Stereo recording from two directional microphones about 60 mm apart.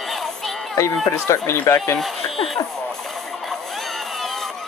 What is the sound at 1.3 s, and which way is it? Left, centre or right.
Speech, left.